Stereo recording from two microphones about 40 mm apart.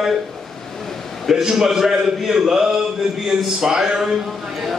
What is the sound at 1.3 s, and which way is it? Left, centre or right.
A man's voice, centre.